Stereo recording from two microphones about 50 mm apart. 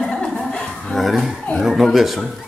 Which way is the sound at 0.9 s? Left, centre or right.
Centre.